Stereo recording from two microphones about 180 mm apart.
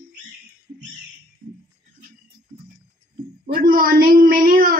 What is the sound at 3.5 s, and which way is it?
A woman's voice, 55° right (ahead or behind).